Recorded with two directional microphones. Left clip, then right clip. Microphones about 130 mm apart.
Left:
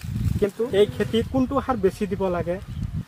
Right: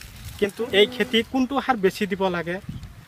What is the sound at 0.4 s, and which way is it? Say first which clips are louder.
Speech: right 1 dB; 35° right (ahead or behind).